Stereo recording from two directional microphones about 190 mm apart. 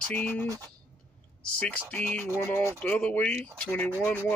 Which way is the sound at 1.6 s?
5° left (ahead or behind).